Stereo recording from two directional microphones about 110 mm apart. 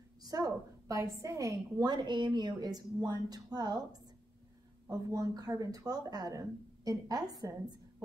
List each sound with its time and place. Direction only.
0.2 s a woman's voice: 35° right (ahead or behind)